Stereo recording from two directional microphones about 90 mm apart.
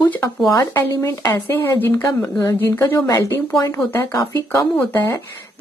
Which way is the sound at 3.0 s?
40° left (ahead or behind).